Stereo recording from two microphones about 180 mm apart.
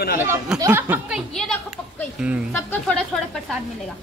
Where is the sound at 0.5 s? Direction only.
15° right (ahead or behind).